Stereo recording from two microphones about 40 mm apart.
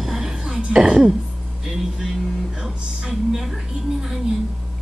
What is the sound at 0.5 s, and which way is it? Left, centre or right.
Speech, right.